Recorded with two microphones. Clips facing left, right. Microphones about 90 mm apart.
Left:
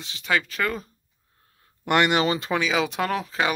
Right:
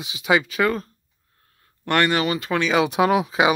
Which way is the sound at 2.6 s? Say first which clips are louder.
Right 5 dB; centre (ahead or behind).